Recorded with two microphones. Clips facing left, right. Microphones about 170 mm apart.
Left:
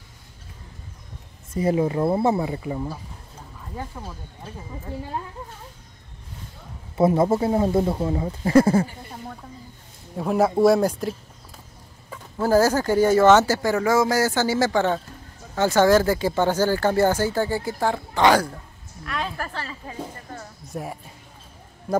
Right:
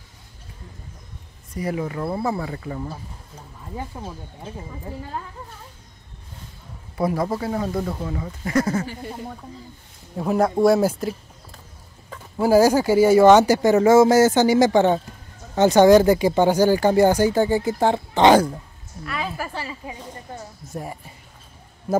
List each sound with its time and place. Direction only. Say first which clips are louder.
1.5 s speech: left 5 dB; 25° left (ahead or behind)
3.7 s speech: right 2 dB; 20° right (ahead or behind)
7.0 s speech: left 5 dB; 25° left (ahead or behind)
10.1 s speech: even; centre (ahead or behind)
12.4 s speech: right 3 dB; 10° right (ahead or behind)
19.0 s speech: right 1 dB; 5° right (ahead or behind)
20.6 s a woman's voice: left 1 dB; centre (ahead or behind)